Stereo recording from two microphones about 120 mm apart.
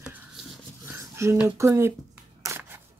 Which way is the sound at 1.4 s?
25° right (ahead or behind).